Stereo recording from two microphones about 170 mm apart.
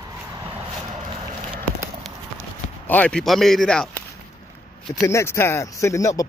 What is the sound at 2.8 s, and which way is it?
A man's voice, 10° left (ahead or behind).